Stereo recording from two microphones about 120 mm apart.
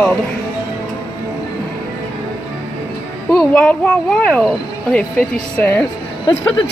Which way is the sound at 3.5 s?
10° left (ahead or behind).